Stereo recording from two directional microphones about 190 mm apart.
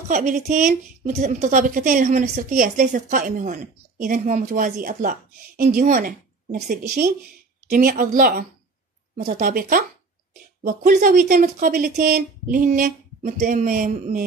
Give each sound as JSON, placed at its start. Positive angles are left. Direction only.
{"t": 0.1, "sound": "a woman's voice", "side_deg": -40}